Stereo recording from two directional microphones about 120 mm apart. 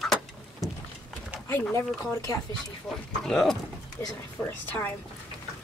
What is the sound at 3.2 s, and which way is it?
Speech, 5° left (ahead or behind).